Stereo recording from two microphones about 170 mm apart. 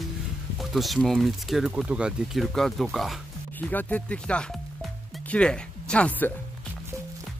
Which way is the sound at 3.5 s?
10° left (ahead or behind).